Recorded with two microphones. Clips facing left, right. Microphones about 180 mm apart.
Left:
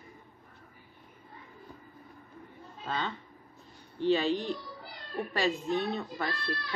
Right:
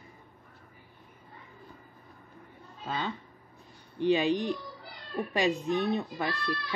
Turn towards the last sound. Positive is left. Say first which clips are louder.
# right 2 dB
turn(degrees=-15)  # may be behind; listen again after turning